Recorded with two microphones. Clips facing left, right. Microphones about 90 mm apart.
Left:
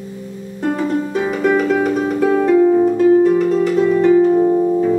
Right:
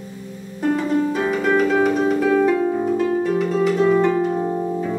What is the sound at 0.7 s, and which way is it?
Music, 5° left (ahead or behind).